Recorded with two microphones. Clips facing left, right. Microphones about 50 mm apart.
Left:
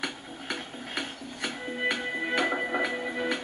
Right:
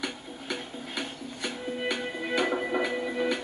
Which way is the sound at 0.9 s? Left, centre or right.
Left.